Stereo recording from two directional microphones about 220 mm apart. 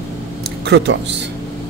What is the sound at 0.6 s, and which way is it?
Speech, 50° right (ahead or behind).